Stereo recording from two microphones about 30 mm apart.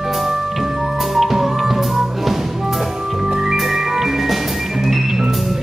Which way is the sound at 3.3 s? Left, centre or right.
Right.